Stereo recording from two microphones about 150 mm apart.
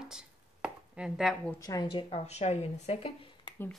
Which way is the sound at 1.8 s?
40° left (ahead or behind).